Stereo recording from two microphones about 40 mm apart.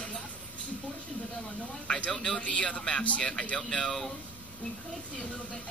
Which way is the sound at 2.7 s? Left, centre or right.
Centre.